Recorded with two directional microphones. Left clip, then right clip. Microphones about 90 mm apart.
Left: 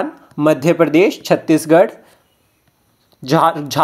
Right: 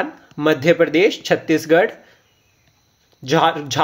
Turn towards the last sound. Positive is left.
turn(degrees=35)  # may be behind; listen again after turning